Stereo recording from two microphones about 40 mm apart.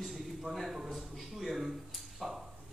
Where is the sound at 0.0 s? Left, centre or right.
Centre.